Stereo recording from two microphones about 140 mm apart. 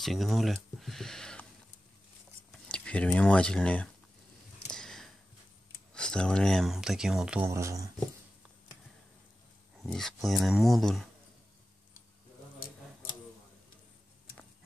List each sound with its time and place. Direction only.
0.0 s speech: centre (ahead or behind)
2.5 s speech: 10° left (ahead or behind)
4.6 s a sound: 5° left (ahead or behind)
5.9 s speech: 5° left (ahead or behind)
7.4 s speech: 20° right (ahead or behind)
9.8 s speech: 5° left (ahead or behind)